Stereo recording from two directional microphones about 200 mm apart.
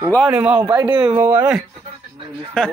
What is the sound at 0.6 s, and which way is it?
Speech, 20° right (ahead or behind).